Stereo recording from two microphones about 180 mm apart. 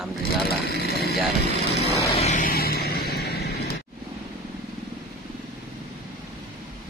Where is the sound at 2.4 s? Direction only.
55° left (ahead or behind).